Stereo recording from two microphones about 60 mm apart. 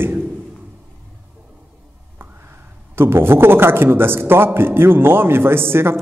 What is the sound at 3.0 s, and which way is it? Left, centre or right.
A man's voice, right.